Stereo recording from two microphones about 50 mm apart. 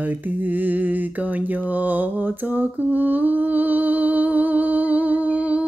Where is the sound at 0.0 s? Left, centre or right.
Right.